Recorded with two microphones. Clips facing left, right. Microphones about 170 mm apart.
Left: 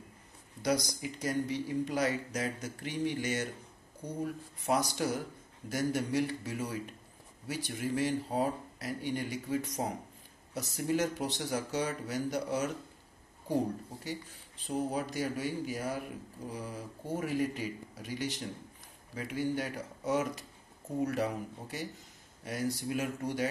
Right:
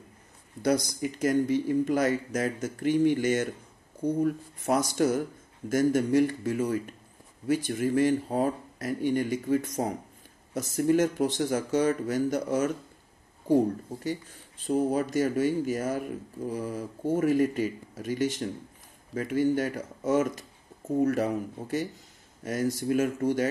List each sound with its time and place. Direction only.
0.6 s speech: 55° right (ahead or behind)
4.6 s speech: 50° right (ahead or behind)
14.7 s speech: 45° right (ahead or behind)